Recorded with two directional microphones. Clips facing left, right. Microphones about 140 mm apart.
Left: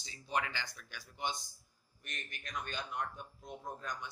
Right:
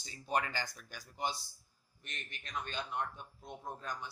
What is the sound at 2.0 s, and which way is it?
A man's voice, 25° right (ahead or behind).